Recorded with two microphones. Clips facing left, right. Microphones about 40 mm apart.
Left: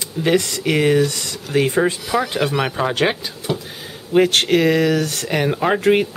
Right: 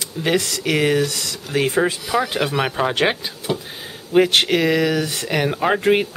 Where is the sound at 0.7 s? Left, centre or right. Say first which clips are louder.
Left 2 dB; centre.